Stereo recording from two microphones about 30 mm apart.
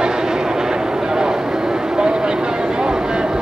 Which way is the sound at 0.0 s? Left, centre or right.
Right.